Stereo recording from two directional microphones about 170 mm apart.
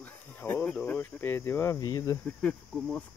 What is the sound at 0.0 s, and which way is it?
Speech, 10° left (ahead or behind).